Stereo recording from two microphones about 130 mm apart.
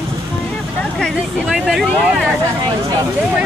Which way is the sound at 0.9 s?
5° left (ahead or behind).